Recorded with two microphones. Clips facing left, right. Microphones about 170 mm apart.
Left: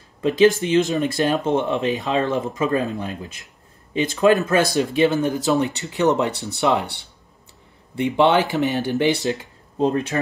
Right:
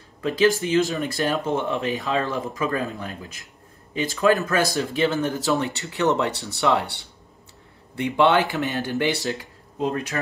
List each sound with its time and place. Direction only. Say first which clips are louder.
0.2 s speech: left 4 dB; 20° left (ahead or behind)
9.8 s speech: left 5 dB; 30° left (ahead or behind)